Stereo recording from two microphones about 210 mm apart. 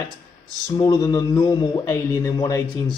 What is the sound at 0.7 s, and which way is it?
A man's voice, 15° left (ahead or behind).